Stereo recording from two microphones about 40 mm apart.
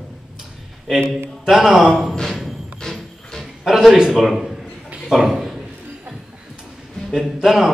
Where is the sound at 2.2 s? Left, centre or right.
Centre.